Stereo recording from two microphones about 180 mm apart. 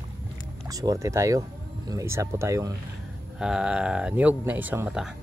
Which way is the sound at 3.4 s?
5° right (ahead or behind).